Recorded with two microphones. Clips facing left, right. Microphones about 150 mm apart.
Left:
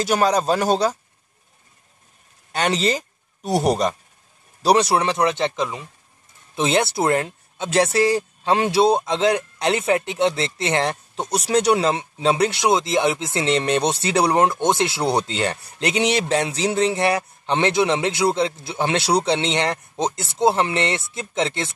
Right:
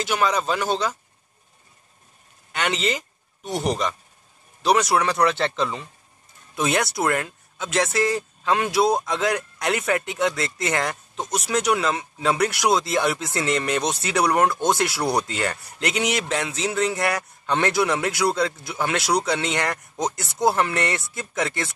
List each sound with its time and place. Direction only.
0.0 s a man's voice: 40° left (ahead or behind)
2.5 s speech: 35° left (ahead or behind); by 5.9 s 15° left (ahead or behind)
6.5 s speech: 25° left (ahead or behind)